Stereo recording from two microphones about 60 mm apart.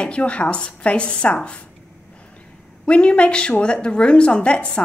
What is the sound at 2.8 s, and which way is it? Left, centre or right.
A woman's voice, centre.